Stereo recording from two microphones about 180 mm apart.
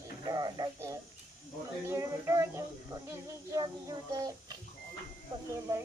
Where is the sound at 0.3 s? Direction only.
20° right (ahead or behind).